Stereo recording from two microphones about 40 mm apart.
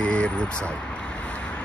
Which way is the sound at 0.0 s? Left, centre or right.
Left.